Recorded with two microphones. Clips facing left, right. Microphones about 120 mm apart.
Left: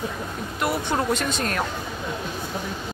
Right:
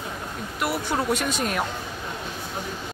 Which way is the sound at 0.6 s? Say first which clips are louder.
Left 1 dB; 5° right (ahead or behind).